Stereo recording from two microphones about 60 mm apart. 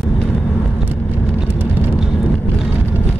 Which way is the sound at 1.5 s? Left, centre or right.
Right.